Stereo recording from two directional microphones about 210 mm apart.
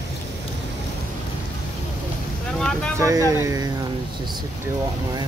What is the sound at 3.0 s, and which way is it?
Speech, 15° right (ahead or behind).